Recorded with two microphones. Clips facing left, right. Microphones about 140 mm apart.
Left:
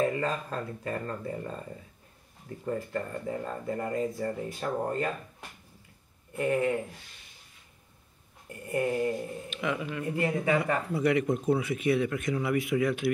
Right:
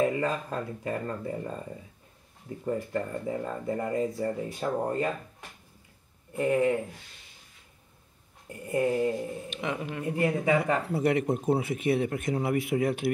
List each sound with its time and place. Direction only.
0.0 s speech: 15° right (ahead or behind)
2.6 s speech: 20° right (ahead or behind)
8.6 s speech: 20° right (ahead or behind)
9.5 s speech: 35° right (ahead or behind)
10.0 s speech: 20° right (ahead or behind)
10.9 s speech: 55° right (ahead or behind)